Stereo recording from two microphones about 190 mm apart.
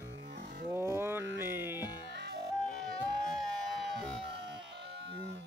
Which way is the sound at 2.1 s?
65° right (ahead or behind).